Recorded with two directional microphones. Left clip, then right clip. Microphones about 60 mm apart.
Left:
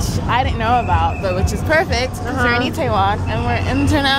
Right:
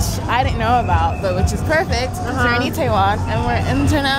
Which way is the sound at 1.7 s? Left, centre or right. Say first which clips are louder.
Left 2 dB; centre.